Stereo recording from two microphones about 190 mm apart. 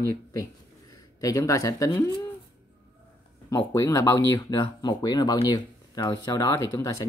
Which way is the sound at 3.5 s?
15° left (ahead or behind).